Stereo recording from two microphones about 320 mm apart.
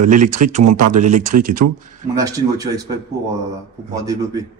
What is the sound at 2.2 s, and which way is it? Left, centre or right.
Speech, centre.